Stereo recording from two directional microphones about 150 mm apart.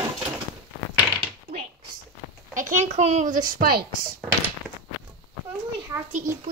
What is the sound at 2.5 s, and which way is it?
A child's voice, 55° right (ahead or behind).